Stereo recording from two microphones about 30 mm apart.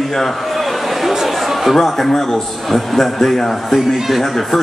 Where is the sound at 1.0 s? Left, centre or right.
Centre.